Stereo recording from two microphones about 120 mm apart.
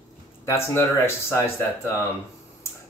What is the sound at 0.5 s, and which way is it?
Speech, 20° left (ahead or behind).